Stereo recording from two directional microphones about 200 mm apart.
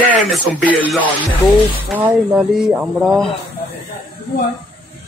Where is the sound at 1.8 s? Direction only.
5° right (ahead or behind).